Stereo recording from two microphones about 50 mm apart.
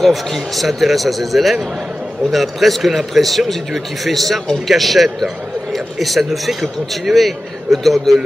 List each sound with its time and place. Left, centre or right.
0.0 s a man's voice: centre